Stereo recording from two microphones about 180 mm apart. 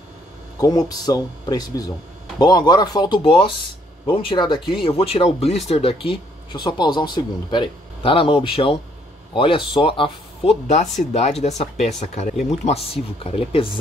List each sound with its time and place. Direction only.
0.6 s a man's voice: 20° left (ahead or behind)